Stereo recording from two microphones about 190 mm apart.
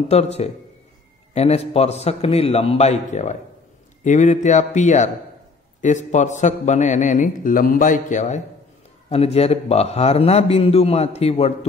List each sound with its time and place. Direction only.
0.1 s a man's voice: 35° left (ahead or behind)